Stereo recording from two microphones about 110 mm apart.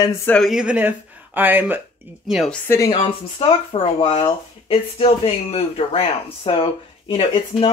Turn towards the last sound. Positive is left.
turn(degrees=55)  # may be behind; listen again after turning